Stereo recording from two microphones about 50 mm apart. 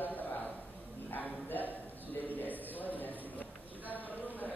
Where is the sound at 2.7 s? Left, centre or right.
Left.